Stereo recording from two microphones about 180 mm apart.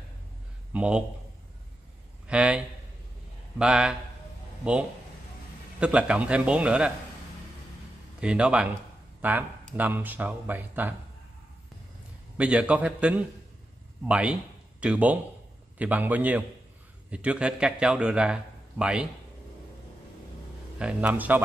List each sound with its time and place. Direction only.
0.7 s a man's voice: 5° right (ahead or behind)
2.2 s a man's voice: 5° right (ahead or behind)
5.8 s speech: 5° right (ahead or behind)
8.2 s a man's voice: 5° right (ahead or behind)
12.4 s a man's voice: 5° right (ahead or behind)
20.8 s speech: 10° right (ahead or behind)